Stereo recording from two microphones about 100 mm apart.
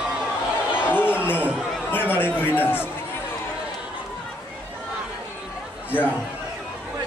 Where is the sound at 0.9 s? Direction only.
20° left (ahead or behind).